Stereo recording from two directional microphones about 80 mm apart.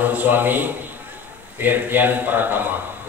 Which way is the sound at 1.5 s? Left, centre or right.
Right.